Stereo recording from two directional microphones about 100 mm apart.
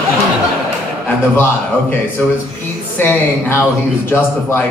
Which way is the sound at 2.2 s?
15° left (ahead or behind).